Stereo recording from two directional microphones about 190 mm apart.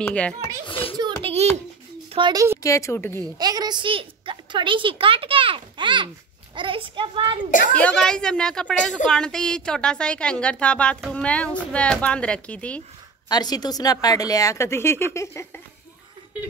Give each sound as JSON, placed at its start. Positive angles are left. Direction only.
{"t": 0.0, "sound": "a woman's voice", "side_deg": 5}
{"t": 0.7, "sound": "a sound", "side_deg": 30}
{"t": 1.2, "sound": "a sound", "side_deg": -35}
{"t": 2.1, "sound": "a child's voice", "side_deg": -25}
{"t": 2.6, "sound": "a woman's voice", "side_deg": 15}
{"t": 3.3, "sound": "a woman's voice", "side_deg": -20}
{"t": 7.7, "sound": "a woman's voice", "side_deg": 5}
{"t": 13.3, "sound": "a woman's voice", "side_deg": 20}